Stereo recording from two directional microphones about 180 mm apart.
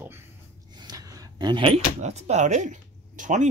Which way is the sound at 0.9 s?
25° right (ahead or behind).